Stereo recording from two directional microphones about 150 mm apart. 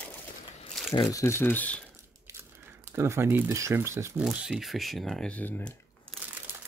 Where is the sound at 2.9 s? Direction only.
15° right (ahead or behind).